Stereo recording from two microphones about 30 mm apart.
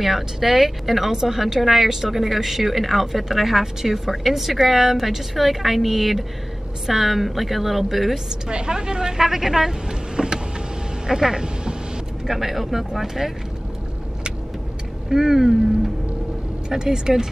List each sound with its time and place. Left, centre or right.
0.0 s a woman's voice: centre
8.5 s a woman's voice: right
9.2 s speech: centre
12.3 s a woman's voice: centre
15.0 s a woman's voice: centre